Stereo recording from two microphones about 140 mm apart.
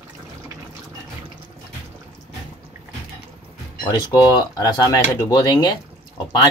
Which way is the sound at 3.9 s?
30° left (ahead or behind).